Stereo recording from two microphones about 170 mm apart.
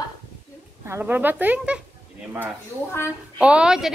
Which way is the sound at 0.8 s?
10° right (ahead or behind).